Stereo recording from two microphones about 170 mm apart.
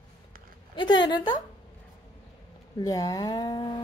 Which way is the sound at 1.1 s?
25° left (ahead or behind).